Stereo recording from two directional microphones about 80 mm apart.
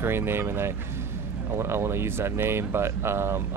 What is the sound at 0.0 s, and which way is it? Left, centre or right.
Speech, right.